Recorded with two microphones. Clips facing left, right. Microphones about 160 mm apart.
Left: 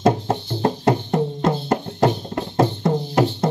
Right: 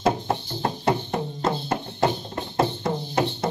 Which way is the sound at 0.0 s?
45° left (ahead or behind).